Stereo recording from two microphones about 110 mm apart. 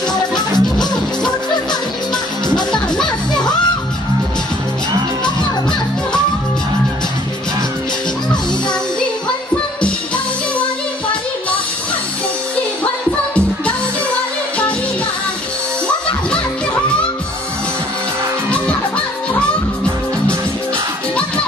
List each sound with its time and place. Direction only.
0.1 s music: 40° left (ahead or behind)
2.7 s music: 5° left (ahead or behind)